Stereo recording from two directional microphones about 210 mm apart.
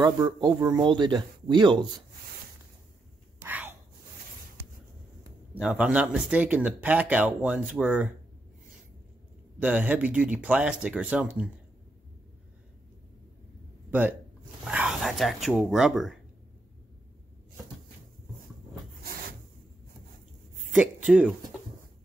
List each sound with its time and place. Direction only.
0.0 s speech: 20° right (ahead or behind)
3.4 s gasp: 10° right (ahead or behind)
5.5 s speech: 5° right (ahead or behind)
9.6 s speech: 5° right (ahead or behind)
13.8 s speech: 10° right (ahead or behind)
20.7 s speech: 5° right (ahead or behind)